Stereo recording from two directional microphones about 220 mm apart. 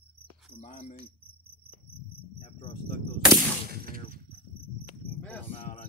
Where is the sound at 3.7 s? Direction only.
40° right (ahead or behind).